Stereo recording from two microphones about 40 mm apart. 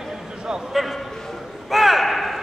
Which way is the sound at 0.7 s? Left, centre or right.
Centre.